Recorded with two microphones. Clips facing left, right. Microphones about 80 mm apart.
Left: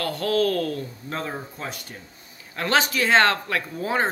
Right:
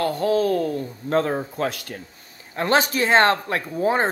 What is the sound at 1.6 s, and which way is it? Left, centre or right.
Speech, right.